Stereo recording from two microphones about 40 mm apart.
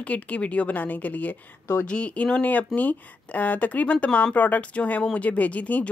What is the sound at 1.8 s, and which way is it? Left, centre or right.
Speech, left.